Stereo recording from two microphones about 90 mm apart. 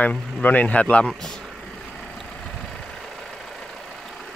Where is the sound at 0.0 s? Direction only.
20° left (ahead or behind).